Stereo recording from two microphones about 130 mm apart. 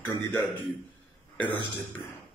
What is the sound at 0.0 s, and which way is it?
A man's voice, 20° left (ahead or behind).